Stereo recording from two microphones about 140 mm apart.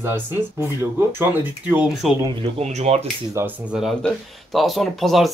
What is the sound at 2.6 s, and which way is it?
Speech, 50° right (ahead or behind).